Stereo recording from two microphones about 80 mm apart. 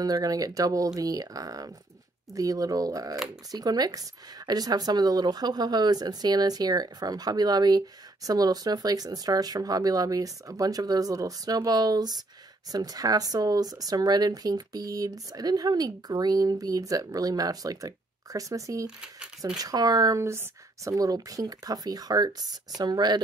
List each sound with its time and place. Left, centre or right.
0.0 s speech: right
20.2 s speech: right